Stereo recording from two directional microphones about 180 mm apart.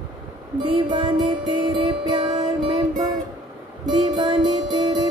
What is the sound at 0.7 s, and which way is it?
Music, 30° right (ahead or behind).